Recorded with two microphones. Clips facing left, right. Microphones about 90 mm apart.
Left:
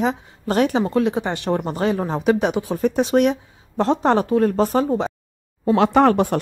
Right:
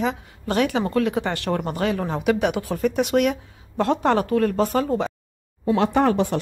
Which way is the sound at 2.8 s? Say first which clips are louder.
Left 3 dB; 35° left (ahead or behind).